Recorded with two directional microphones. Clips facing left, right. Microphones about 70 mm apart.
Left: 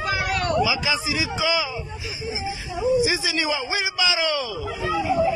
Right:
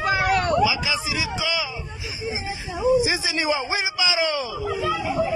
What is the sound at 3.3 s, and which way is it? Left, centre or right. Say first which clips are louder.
Speech: right 1 dB; right.